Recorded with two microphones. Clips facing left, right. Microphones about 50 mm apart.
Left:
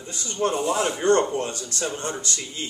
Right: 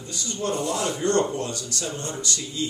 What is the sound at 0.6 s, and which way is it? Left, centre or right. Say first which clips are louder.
A man's voice: left 2 dB; left.